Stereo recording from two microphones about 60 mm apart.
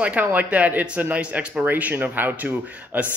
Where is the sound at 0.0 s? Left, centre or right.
Right.